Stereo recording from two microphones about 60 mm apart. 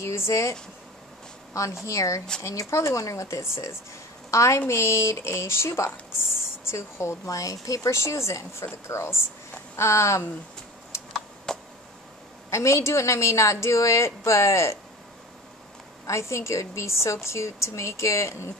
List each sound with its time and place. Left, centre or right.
0.0 s a woman's voice: left
7.2 s a woman's voice: left
10.9 s computer keyboard: left
11.5 s a sound: centre
12.4 s a woman's voice: left
16.1 s a woman's voice: left